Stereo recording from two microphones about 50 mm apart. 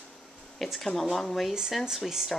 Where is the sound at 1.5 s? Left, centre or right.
Centre.